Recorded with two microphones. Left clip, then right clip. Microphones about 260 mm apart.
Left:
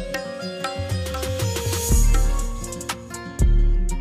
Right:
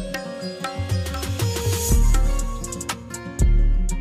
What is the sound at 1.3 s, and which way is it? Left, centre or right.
Music, centre.